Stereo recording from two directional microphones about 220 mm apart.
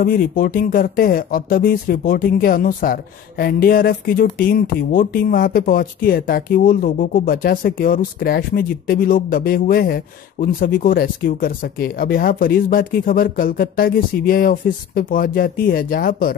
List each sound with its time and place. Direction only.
0.0 s speech: 40° left (ahead or behind)